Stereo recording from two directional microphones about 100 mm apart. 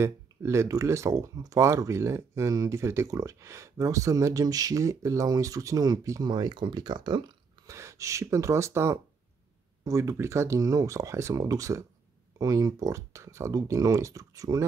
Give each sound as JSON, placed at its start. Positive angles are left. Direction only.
{"t": 0.0, "sound": "speech", "side_deg": -25}
{"t": 6.3, "sound": "speech", "side_deg": -50}
{"t": 7.6, "sound": "speech", "side_deg": -30}